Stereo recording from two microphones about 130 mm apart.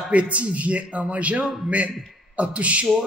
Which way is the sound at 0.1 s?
10° right (ahead or behind).